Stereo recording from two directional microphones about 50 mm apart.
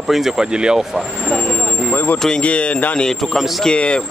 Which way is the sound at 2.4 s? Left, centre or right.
Left.